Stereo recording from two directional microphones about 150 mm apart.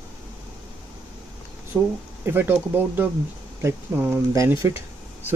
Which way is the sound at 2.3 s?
15° right (ahead or behind).